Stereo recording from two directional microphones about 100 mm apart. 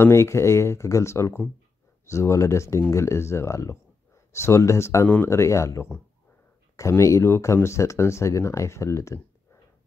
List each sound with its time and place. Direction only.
0.0 s speech: 25° left (ahead or behind)